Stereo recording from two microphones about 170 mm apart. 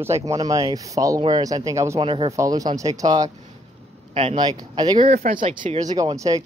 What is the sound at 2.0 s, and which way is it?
Speech, 30° right (ahead or behind).